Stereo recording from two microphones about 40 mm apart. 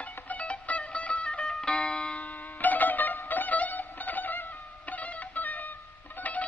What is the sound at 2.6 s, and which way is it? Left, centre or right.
Music, left.